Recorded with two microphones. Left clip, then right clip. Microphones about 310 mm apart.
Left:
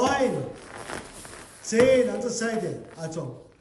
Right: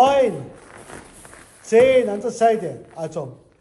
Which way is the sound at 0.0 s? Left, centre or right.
Centre.